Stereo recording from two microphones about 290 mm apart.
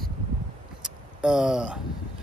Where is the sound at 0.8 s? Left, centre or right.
Centre.